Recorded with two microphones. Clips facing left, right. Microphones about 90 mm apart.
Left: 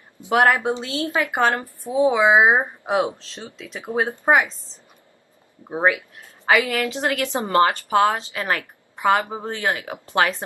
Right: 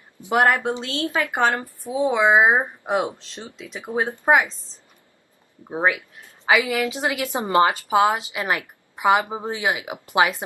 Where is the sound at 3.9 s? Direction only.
20° left (ahead or behind).